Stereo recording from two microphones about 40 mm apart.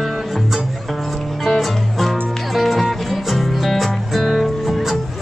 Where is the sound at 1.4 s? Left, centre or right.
Centre.